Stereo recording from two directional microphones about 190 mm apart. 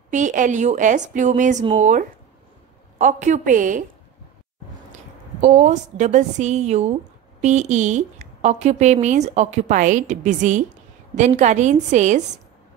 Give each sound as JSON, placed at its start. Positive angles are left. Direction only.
{"t": 0.1, "sound": "a woman's voice", "side_deg": -40}
{"t": 5.4, "sound": "a woman's voice", "side_deg": -40}